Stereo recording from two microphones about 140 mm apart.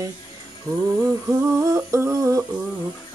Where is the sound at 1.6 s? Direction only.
20° right (ahead or behind).